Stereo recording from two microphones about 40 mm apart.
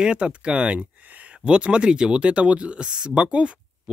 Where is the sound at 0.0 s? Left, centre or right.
Right.